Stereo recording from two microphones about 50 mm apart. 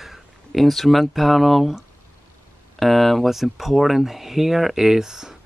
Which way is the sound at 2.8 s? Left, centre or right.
Centre.